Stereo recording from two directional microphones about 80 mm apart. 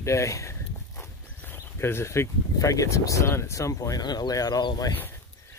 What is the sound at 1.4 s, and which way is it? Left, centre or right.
Speech, left.